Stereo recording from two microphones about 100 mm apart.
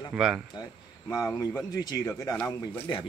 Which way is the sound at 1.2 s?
20° left (ahead or behind).